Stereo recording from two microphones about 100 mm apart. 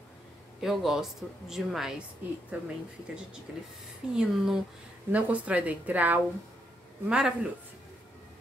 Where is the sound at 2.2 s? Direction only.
20° right (ahead or behind).